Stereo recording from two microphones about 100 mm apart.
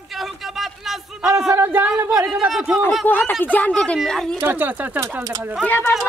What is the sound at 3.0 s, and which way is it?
Speech, 20° left (ahead or behind).